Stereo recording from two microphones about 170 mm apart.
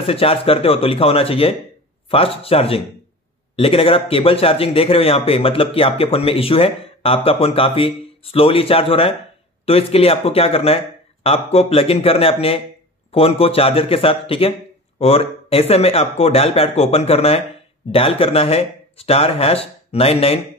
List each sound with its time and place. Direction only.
0.0 s speech: 35° left (ahead or behind)